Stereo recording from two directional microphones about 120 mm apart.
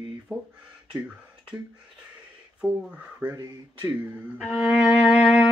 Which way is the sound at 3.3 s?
30° right (ahead or behind).